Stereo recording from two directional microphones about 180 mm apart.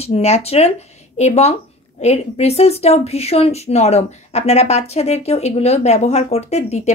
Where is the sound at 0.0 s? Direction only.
35° left (ahead or behind).